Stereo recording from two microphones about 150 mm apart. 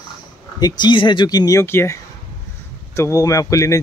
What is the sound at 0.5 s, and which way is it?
Speech, 30° left (ahead or behind).